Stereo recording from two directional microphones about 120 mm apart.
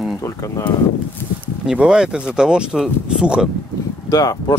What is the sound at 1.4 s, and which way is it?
Speech, 5° right (ahead or behind).